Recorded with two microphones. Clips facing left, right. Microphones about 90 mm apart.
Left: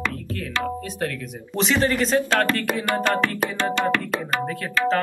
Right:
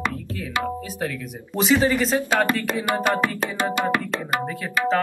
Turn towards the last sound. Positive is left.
turn(degrees=-10)  # may be behind; listen again after turning